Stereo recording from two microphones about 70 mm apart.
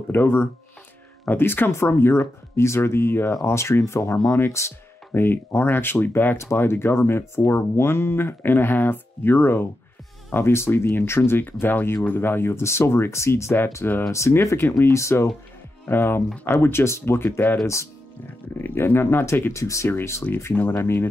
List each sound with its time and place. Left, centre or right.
0.1 s speech: left
6.3 s speech: left
15.9 s speech: left
18.6 s speech: left